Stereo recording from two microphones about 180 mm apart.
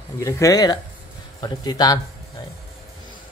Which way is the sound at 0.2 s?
20° left (ahead or behind).